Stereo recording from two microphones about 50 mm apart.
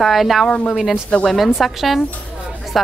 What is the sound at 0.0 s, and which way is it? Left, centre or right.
A woman's voice, centre.